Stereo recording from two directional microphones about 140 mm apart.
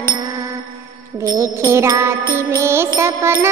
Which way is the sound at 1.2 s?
20° right (ahead or behind).